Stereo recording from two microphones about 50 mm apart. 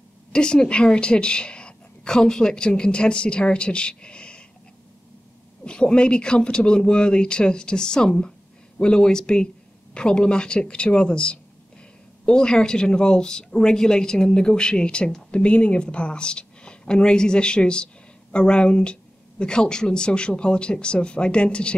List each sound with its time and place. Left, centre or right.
0.3 s speech: centre
5.7 s speech: centre